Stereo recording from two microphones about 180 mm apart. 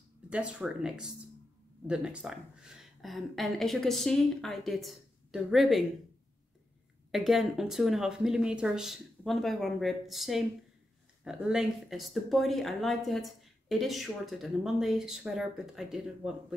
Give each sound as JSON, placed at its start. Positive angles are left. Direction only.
{"t": 0.3, "sound": "speech", "side_deg": -5}
{"t": 7.1, "sound": "speech", "side_deg": 0}